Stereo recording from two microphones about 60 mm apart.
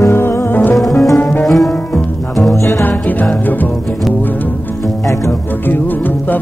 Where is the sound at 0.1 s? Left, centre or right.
Left.